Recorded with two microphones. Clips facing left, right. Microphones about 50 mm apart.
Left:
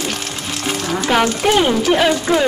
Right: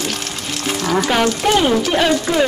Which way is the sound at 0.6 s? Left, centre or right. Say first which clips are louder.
Right 3 dB; centre.